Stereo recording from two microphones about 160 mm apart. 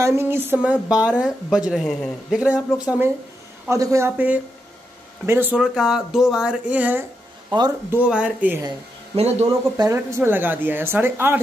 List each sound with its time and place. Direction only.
0.0 s a woman's voice: 15° right (ahead or behind)
3.6 s a woman's voice: 20° right (ahead or behind)
9.1 s speech: 40° right (ahead or behind)
9.5 s a woman's voice: 20° right (ahead or behind)